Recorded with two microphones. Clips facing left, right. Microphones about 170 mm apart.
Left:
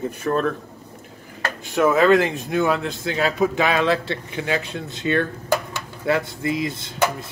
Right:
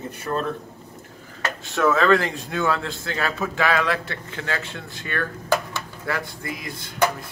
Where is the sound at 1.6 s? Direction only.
15° left (ahead or behind).